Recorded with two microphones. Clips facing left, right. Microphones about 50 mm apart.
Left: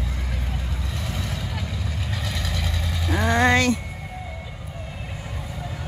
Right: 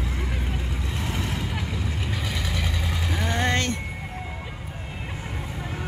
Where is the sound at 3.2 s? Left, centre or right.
Left.